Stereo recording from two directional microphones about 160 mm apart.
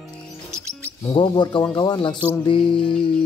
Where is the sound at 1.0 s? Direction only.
25° left (ahead or behind).